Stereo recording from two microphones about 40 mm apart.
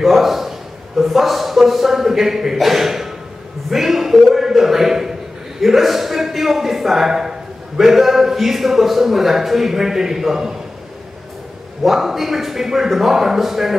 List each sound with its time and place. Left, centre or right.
0.0 s a man's voice: centre
11.8 s a man's voice: centre